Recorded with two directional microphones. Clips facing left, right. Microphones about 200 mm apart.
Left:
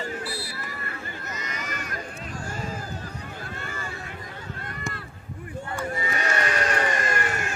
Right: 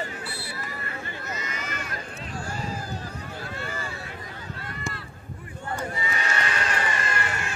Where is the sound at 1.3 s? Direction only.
40° left (ahead or behind).